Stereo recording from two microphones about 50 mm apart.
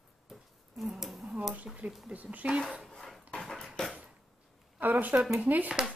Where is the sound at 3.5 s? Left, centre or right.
Centre.